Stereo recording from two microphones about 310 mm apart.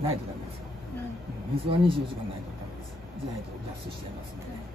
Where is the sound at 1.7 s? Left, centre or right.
Centre.